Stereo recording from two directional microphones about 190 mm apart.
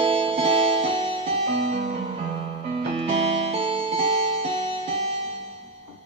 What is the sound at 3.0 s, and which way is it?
Music, 30° right (ahead or behind).